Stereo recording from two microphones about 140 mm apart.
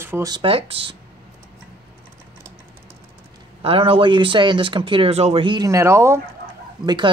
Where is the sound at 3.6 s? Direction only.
40° right (ahead or behind).